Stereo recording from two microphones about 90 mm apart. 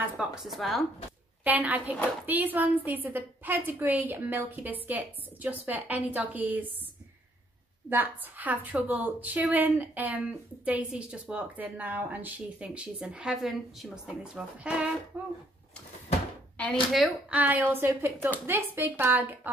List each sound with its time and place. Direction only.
0.0 s speech: 10° right (ahead or behind)
1.4 s a woman's voice: 20° right (ahead or behind)
7.9 s a woman's voice: 20° right (ahead or behind)
16.6 s a sound: 15° left (ahead or behind)
17.3 s a woman's voice: 20° right (ahead or behind)